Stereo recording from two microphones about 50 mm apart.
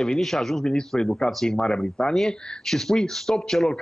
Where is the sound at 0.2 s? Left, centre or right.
Centre.